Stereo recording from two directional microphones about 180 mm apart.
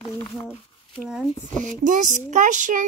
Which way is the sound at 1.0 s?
5° right (ahead or behind).